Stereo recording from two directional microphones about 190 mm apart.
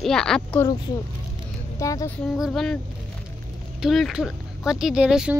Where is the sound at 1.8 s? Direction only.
15° left (ahead or behind).